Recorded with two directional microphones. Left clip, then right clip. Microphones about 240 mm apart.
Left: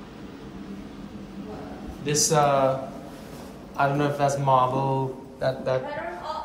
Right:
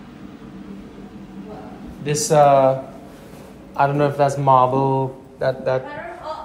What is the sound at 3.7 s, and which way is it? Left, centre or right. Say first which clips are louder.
A man's voice: right 6 dB; centre.